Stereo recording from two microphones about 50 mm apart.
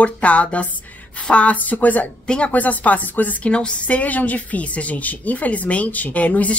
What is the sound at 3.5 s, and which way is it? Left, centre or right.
A woman's voice, left.